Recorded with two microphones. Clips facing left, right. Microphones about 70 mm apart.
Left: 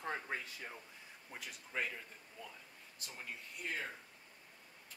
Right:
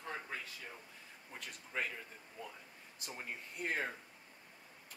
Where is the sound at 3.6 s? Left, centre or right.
Right.